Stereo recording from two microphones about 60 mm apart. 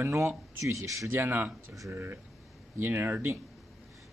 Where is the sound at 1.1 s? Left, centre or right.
Right.